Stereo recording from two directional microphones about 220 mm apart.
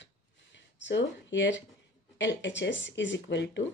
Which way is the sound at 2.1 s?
55° left (ahead or behind).